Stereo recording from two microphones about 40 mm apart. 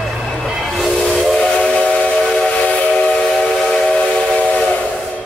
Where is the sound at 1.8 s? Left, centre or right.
Left.